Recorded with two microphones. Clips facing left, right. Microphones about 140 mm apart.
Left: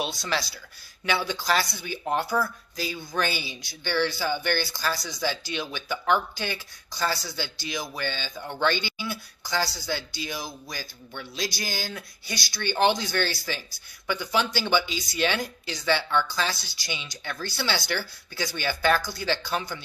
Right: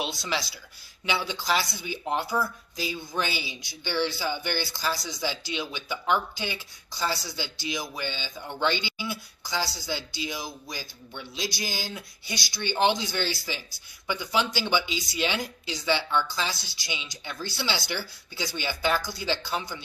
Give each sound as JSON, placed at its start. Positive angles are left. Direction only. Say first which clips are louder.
{"t": 1.0, "sound": "speech", "louder": "left 2 dB", "side_deg": -15}